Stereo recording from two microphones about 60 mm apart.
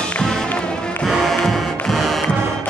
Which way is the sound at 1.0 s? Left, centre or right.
Centre.